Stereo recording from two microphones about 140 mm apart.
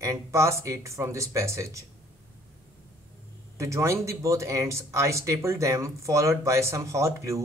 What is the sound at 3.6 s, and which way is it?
Speech, 20° right (ahead or behind).